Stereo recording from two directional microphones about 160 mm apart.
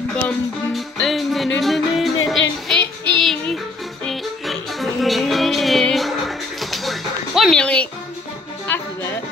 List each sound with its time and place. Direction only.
0.9 s music: centre (ahead or behind)